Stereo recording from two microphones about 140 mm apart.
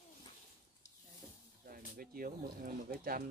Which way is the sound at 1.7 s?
90° right.